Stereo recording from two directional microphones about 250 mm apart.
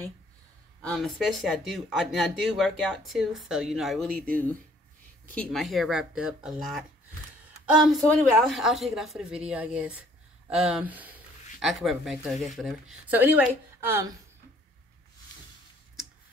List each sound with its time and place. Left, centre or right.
0.8 s speech: centre